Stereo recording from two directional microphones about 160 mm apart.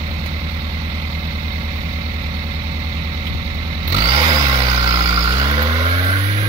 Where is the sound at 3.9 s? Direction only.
35° right (ahead or behind).